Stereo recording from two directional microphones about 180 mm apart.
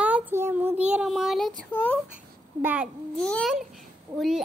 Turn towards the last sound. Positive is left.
turn(degrees=0)  # may be behind; listen again after turning